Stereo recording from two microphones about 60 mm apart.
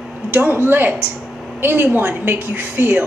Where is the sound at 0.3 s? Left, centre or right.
Right.